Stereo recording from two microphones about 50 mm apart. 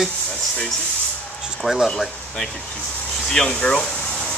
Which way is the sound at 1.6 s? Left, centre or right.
Centre.